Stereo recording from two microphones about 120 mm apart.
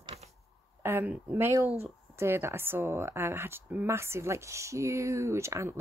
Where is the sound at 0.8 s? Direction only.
15° right (ahead or behind).